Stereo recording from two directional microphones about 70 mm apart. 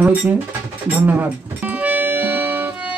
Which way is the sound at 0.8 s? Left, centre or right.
Right.